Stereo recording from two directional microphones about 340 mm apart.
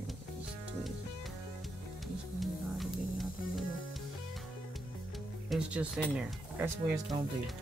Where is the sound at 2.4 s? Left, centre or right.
Centre.